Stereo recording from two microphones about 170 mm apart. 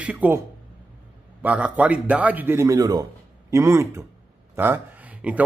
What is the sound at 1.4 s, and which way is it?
Speech, 10° right (ahead or behind).